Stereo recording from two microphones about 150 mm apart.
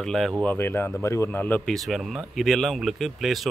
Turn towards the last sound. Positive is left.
turn(degrees=0)  # may be behind; listen again after turning